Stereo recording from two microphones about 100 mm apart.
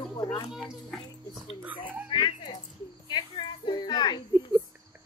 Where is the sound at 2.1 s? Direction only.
50° left (ahead or behind).